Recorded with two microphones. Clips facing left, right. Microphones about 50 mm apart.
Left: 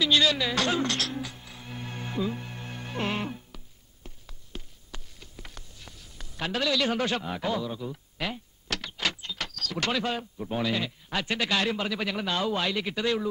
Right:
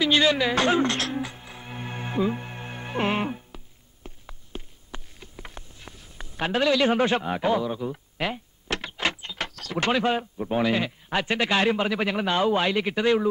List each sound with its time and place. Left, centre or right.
0.0 s music: right